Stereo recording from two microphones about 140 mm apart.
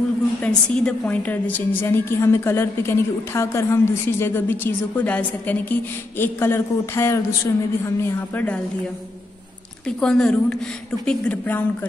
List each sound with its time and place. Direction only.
0.4 s a woman's voice: 5° left (ahead or behind)
9.8 s a woman's voice: 5° left (ahead or behind)